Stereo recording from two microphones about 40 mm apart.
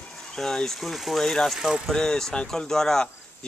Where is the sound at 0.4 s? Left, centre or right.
Centre.